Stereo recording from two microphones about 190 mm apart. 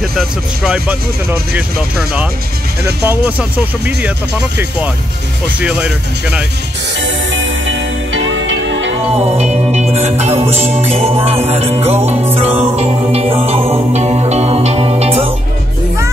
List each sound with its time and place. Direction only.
0.1 s speech: centre (ahead or behind)
7.0 s music: 75° right (ahead or behind)
9.4 s music: 35° right (ahead or behind)